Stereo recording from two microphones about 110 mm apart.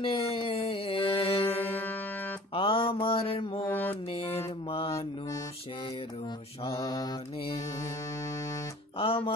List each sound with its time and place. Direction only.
0.0 s mantra: 55° left (ahead or behind)
1.6 s music: 15° left (ahead or behind)
2.5 s mantra: 55° left (ahead or behind)
3.6 s mantra: 15° left (ahead or behind)
4.1 s mantra: 60° left (ahead or behind)
6.8 s mantra: 35° left (ahead or behind)
8.9 s music: 55° left (ahead or behind)